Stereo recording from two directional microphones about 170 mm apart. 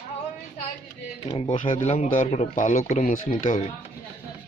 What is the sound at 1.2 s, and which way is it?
Speech, 35° left (ahead or behind).